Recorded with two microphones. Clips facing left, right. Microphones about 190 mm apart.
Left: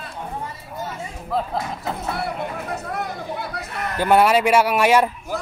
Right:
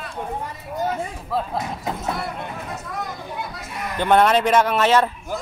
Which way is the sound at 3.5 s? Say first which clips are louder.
Left 4 dB; 60° left (ahead or behind).